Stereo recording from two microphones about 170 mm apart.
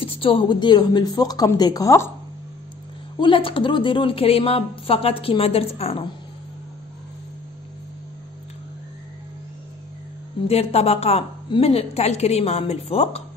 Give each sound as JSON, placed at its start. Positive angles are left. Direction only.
{"t": 0.0, "sound": "a woman's voice", "side_deg": 30}
{"t": 3.2, "sound": "a woman's voice", "side_deg": 30}
{"t": 10.4, "sound": "a woman's voice", "side_deg": 35}